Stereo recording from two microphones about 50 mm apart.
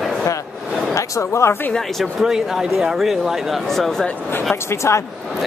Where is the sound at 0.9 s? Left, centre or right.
Left.